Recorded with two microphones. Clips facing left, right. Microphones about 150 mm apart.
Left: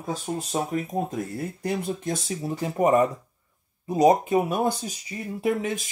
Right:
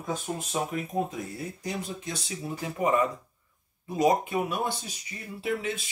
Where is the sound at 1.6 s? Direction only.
50° left (ahead or behind).